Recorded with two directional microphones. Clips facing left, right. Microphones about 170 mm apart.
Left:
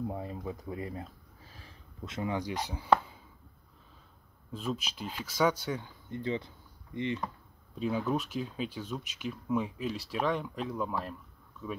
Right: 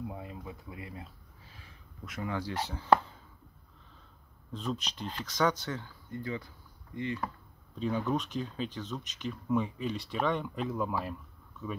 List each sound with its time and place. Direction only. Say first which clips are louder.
0.0 s speech: left 5 dB; 35° left (ahead or behind)
2.0 s speech: left 2 dB; 20° left (ahead or behind)
4.5 s speech: even; 10° left (ahead or behind)
7.7 s speech: even; 5° left (ahead or behind)